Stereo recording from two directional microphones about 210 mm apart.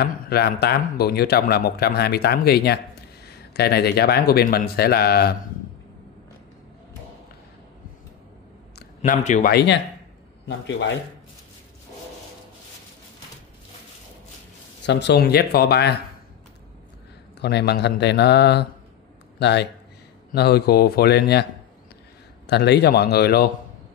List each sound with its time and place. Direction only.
0.0 s speech: 50° left (ahead or behind)
8.7 s speech: 40° left (ahead or behind)
14.9 s speech: 55° left (ahead or behind)
17.4 s speech: 55° left (ahead or behind)
22.5 s speech: 50° left (ahead or behind)